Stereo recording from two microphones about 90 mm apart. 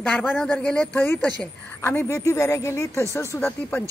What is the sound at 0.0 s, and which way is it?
Speech, 15° left (ahead or behind).